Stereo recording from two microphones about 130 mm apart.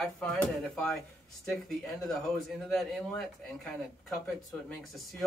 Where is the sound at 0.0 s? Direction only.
5° left (ahead or behind).